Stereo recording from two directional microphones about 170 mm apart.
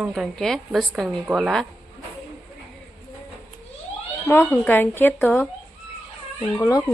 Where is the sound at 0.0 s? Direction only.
Centre (ahead or behind).